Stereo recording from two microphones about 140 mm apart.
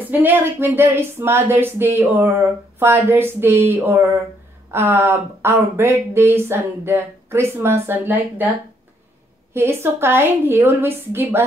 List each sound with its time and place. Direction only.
0.0 s speech: 15° right (ahead or behind)